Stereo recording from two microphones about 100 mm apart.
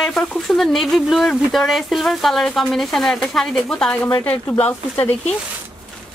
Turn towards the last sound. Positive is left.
turn(degrees=20)  # may be behind; listen again after turning